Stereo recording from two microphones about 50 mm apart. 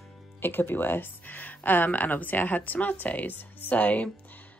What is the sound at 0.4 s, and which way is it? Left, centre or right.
Speech, left.